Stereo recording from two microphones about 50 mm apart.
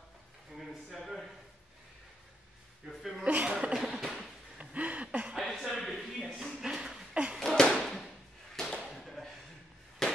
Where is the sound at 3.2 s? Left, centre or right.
Right.